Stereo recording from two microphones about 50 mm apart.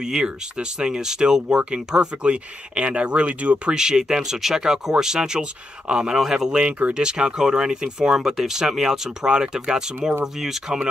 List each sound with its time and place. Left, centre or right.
0.0 s speech: centre
3.7 s speech: centre
6.1 s speech: centre